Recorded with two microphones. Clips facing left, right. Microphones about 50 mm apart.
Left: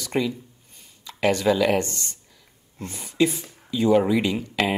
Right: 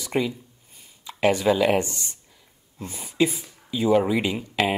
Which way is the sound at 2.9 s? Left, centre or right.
Centre.